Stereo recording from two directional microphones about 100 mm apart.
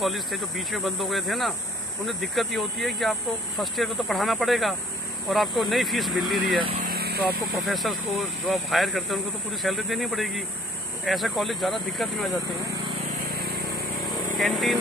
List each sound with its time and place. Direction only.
0.0 s speech: centre (ahead or behind)
13.9 s vehicle: centre (ahead or behind)